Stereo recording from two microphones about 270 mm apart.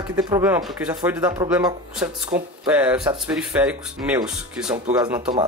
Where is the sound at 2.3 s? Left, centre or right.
Right.